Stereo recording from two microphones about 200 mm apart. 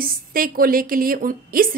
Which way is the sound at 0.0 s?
45° right (ahead or behind).